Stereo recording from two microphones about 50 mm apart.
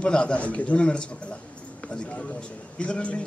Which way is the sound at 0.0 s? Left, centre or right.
Left.